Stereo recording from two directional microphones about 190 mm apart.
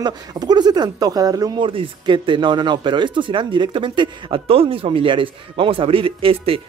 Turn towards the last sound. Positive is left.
turn(degrees=-30)  # may be behind; listen again after turning